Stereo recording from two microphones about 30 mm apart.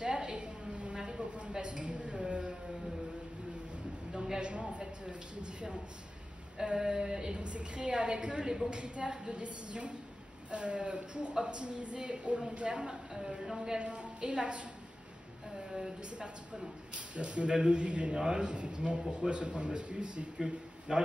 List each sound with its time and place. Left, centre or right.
0.0 s a sound: right
4.1 s a sound: centre
4.4 s a sound: right
6.8 s a sound: right
7.3 s a woman's voice: right
8.5 s a woman's voice: right
8.7 s a woman's voice: right
13.1 s a woman's voice: centre
13.7 s a woman's voice: right
16.9 s a woman's voice: right
18.1 s a woman's voice: right
20.3 s a man's voice: right